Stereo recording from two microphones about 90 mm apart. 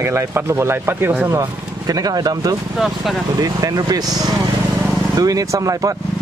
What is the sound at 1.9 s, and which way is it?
Speech, 45° right (ahead or behind).